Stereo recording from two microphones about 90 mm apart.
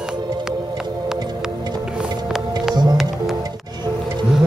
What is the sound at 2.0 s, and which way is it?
Music, 5° right (ahead or behind).